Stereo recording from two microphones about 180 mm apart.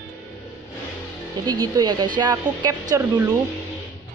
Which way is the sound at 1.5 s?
25° right (ahead or behind).